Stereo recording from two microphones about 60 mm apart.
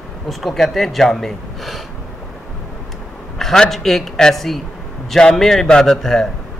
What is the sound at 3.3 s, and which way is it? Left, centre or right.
Speech, centre.